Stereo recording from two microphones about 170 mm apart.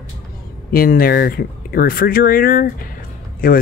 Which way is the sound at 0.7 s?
60° left (ahead or behind).